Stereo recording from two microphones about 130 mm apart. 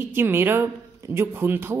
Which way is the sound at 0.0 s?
15° right (ahead or behind).